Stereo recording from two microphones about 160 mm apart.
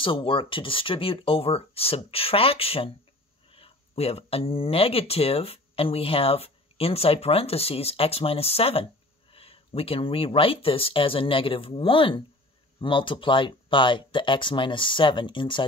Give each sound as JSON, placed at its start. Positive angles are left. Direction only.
{"t": 0.0, "sound": "speech", "side_deg": 35}